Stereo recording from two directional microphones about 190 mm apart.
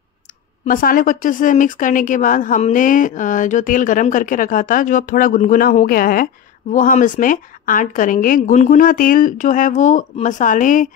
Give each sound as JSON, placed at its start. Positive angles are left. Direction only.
{"t": 0.7, "sound": "speech", "side_deg": 45}